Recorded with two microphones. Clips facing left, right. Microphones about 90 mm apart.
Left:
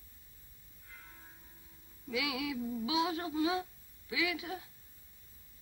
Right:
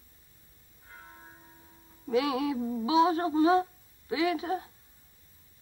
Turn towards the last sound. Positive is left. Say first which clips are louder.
# right 8 dB
turn(degrees=-40)  # may be behind; listen again after turning